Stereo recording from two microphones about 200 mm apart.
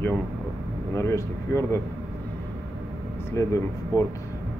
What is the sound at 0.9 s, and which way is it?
Speech, 15° left (ahead or behind).